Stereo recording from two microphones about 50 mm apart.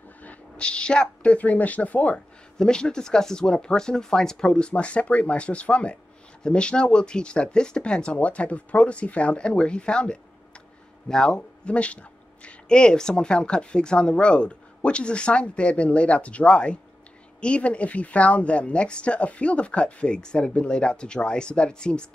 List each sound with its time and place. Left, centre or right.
0.2 s a sound: left
0.7 s speech: centre
2.1 s speech: centre